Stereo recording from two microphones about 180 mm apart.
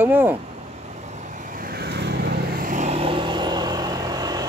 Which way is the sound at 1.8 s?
65° right (ahead or behind).